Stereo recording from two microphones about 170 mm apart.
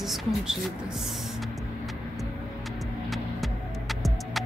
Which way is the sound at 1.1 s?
Centre (ahead or behind).